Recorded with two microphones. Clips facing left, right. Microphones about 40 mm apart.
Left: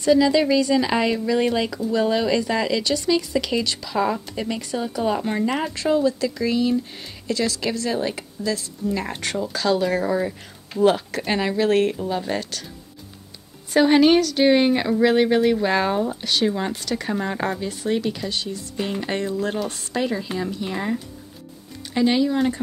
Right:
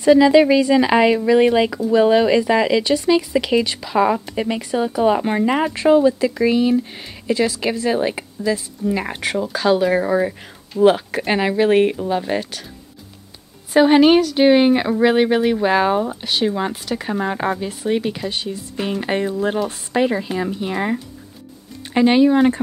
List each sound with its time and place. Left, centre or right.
0.0 s speech: right
13.7 s speech: centre